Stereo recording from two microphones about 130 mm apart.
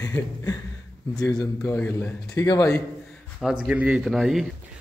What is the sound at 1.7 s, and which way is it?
A man's voice, 15° left (ahead or behind).